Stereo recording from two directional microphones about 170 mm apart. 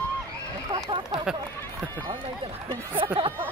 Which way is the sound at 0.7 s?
25° right (ahead or behind).